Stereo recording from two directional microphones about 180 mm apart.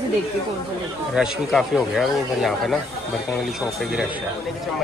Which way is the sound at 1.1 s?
Centre (ahead or behind).